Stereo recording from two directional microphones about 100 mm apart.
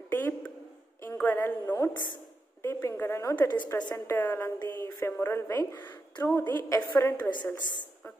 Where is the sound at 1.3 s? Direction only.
25° left (ahead or behind).